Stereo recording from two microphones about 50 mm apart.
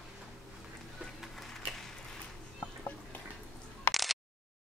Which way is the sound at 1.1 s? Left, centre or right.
Centre.